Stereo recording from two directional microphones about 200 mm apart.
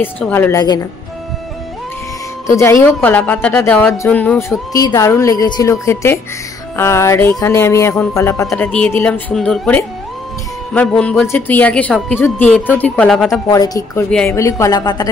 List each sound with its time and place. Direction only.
0.0 s a woman's voice: 10° left (ahead or behind)
2.4 s a woman's voice: 15° left (ahead or behind)
13.5 s a woman's voice: 15° left (ahead or behind)